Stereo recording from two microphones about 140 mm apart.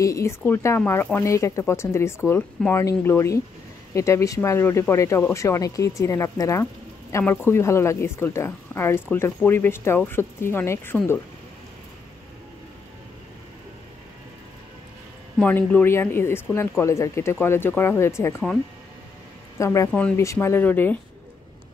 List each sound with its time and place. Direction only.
0.0 s speech: 20° left (ahead or behind)
15.3 s speech: 10° left (ahead or behind)
19.6 s speech: 20° left (ahead or behind)
19.9 s speech: 10° left (ahead or behind)
20.2 s speech: 20° left (ahead or behind)